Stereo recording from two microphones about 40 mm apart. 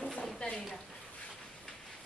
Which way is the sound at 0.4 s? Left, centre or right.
Left.